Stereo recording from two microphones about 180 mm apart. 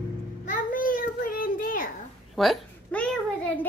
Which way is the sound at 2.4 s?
5° left (ahead or behind).